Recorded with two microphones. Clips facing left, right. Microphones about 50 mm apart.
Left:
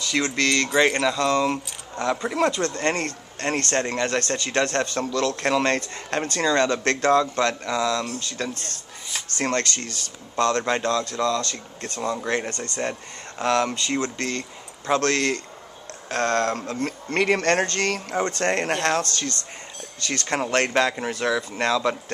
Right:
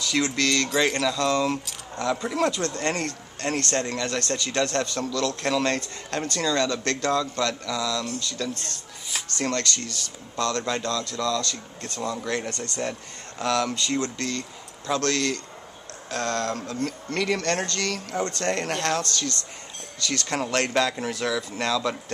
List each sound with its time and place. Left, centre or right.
0.0 s a sound: centre
0.4 s speech: centre
3.3 s speech: left
9.5 s speech: left; by 12.2 s centre
12.2 s speech: left
12.4 s speech: centre
13.4 s speech: left
13.7 s speech: centre
15.1 s speech: left